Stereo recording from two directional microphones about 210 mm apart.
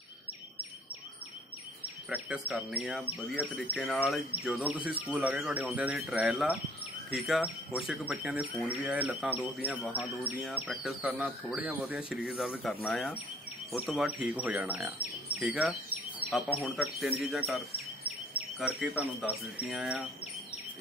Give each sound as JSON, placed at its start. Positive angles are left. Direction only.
{"t": 2.0, "sound": "speech", "side_deg": -5}